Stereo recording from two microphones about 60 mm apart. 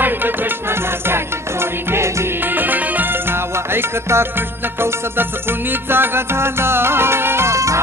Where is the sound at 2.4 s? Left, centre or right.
Right.